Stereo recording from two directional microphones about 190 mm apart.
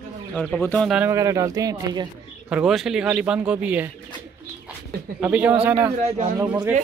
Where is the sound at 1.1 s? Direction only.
15° right (ahead or behind).